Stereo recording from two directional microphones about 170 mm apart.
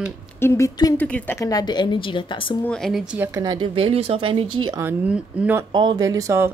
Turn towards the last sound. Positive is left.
turn(degrees=-15)  # may be behind; listen again after turning